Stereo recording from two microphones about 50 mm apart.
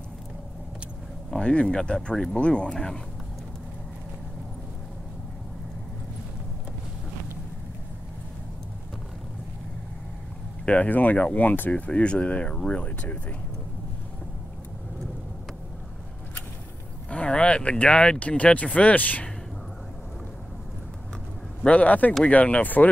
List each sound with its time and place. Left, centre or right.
1.4 s speech: centre
10.6 s speech: left
11.7 s speech: left
17.1 s speech: left
21.6 s speech: left